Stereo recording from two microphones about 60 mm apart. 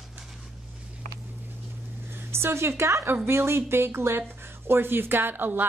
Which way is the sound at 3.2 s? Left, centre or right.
Right.